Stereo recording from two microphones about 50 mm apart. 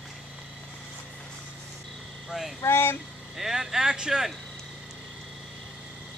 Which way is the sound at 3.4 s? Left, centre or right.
Centre.